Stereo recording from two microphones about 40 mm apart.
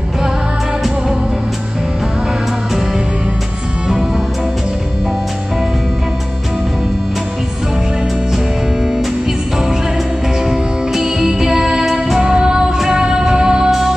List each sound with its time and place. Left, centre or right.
10.5 s music: centre
13.7 s music: centre